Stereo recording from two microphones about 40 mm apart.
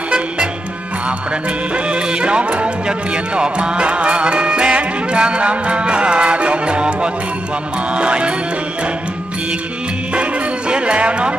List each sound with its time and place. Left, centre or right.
1.9 s music: right
10.7 s music: right